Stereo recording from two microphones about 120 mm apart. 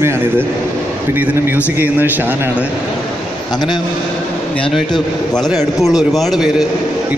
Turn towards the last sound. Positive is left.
turn(degrees=0)  # may be behind; listen again after turning